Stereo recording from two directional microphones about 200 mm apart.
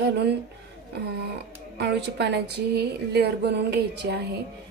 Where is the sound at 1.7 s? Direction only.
55° right (ahead or behind).